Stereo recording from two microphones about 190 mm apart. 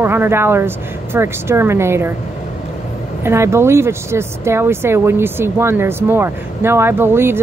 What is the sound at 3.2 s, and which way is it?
Speech, 15° right (ahead or behind).